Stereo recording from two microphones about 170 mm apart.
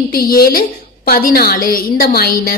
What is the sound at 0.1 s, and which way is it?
A woman's voice, 60° left (ahead or behind).